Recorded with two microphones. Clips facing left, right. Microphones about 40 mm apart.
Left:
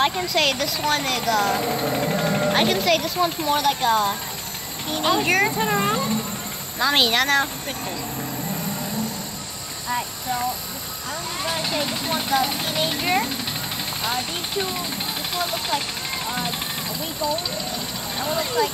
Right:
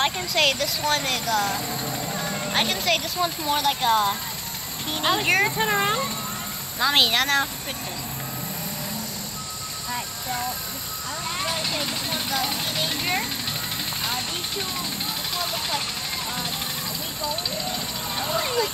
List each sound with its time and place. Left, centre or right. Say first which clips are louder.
0.0 s speech: left 2 dB; centre
1.6 s speech: left 7 dB; left
2.5 s speech: left 1 dB; centre
5.6 s a child's voice: left 1 dB; centre
6.8 s speech: left 1 dB; centre
11.4 s speech: left 4 dB; centre
16.3 s speech: left 3 dB; centre